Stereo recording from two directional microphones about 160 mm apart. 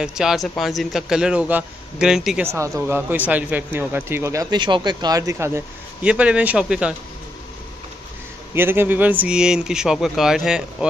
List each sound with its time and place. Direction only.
0.0 s a man's voice: 5° right (ahead or behind)
2.4 s speech: 15° right (ahead or behind)
8.5 s a man's voice: 15° right (ahead or behind)